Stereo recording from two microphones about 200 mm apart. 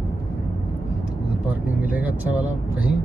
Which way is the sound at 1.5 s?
5° right (ahead or behind).